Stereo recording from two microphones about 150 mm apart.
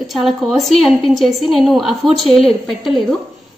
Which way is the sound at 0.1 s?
Centre (ahead or behind).